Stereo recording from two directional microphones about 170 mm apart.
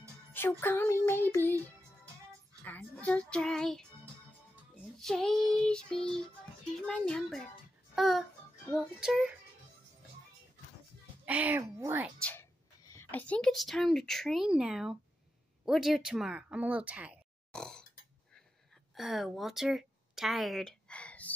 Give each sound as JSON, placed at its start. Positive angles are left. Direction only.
{"t": 0.3, "sound": "music", "side_deg": 15}
{"t": 1.0, "sound": "child singing", "side_deg": 15}
{"t": 2.6, "sound": "a child's voice", "side_deg": 10}
{"t": 11.2, "sound": "speech", "side_deg": -10}
{"t": 12.2, "sound": "a woman's voice", "side_deg": 10}
{"t": 17.5, "sound": "burping", "side_deg": 5}
{"t": 18.9, "sound": "a woman's voice", "side_deg": 0}